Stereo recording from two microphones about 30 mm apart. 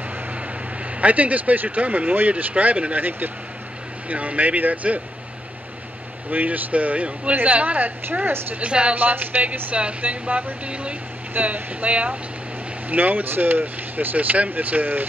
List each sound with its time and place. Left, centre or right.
1.0 s speech: right
3.0 s speech: right
4.1 s speech: right
6.3 s speech: right
6.7 s speech: right
9.4 s speech: right
11.8 s speech: right
12.9 s speech: right